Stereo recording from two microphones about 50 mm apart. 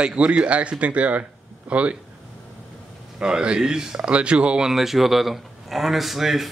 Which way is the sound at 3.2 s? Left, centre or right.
Centre.